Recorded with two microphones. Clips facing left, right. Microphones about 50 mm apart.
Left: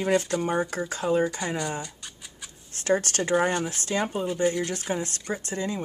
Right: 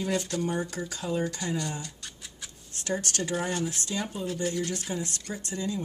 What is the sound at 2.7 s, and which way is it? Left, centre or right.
Speech, left.